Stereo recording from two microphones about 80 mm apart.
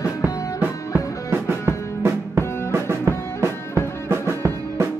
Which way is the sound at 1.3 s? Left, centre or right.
Right.